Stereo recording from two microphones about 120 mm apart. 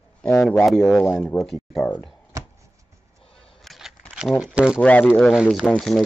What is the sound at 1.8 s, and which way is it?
Speech, 15° left (ahead or behind).